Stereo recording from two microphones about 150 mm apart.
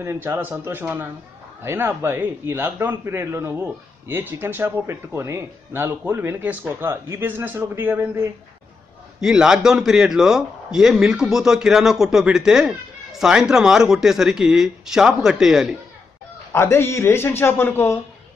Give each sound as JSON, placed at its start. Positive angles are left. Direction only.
{"t": 0.0, "sound": "a man's voice", "side_deg": -15}
{"t": 16.5, "sound": "a man's voice", "side_deg": 15}